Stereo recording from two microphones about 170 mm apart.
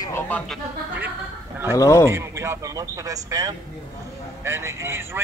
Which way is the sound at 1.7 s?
20° left (ahead or behind).